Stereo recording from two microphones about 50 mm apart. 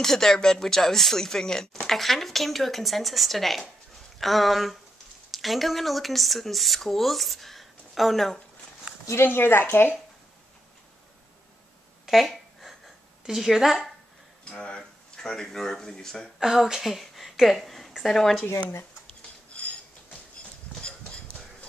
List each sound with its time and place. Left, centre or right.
0.0 s speech: centre
9.2 s speech: left
12.1 s a sound: centre
13.2 s speech: centre
14.8 s speech: centre
16.3 s a woman's voice: centre
20.8 s a sound: left